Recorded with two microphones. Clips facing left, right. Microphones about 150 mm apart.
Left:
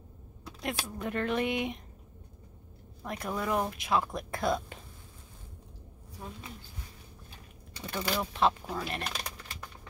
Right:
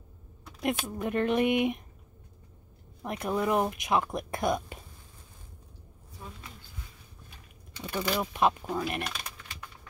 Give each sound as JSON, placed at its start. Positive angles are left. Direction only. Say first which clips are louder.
{"t": 0.6, "sound": "speech", "louder": "right 5 dB", "side_deg": -20}
{"t": 3.0, "sound": "speech", "louder": "right 5 dB", "side_deg": -20}
{"t": 7.9, "sound": "speech", "louder": "right 3 dB", "side_deg": -15}
{"t": 9.1, "sound": "typing", "louder": "left 2 dB", "side_deg": 35}